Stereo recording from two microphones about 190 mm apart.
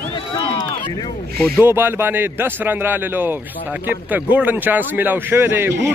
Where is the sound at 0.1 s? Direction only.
25° left (ahead or behind).